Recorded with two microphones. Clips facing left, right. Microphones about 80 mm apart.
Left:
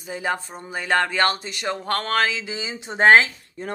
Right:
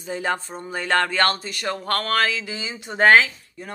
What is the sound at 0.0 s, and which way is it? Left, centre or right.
A woman's voice, centre.